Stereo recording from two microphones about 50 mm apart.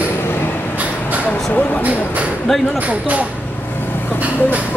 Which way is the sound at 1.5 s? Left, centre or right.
Left.